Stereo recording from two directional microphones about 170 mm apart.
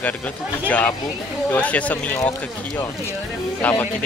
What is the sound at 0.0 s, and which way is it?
Speech, 10° left (ahead or behind).